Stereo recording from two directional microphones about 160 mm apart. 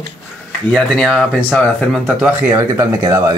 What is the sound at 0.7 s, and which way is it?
Speech, centre (ahead or behind).